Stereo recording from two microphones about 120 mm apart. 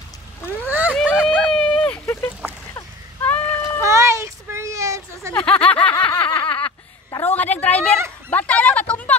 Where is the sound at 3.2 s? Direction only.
15° left (ahead or behind).